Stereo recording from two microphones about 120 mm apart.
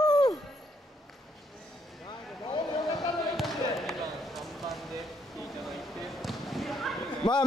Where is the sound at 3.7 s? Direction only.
Centre (ahead or behind).